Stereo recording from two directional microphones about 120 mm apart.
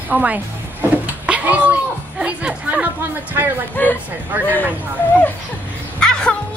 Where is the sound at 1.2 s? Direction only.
10° right (ahead or behind).